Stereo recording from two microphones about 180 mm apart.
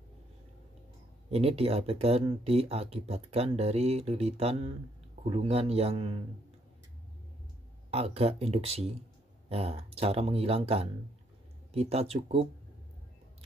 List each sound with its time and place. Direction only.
1.3 s speech: 35° right (ahead or behind)
7.9 s speech: 35° right (ahead or behind)